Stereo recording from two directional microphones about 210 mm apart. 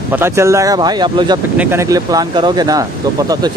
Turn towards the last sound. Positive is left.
turn(degrees=-15)  # may be behind; listen again after turning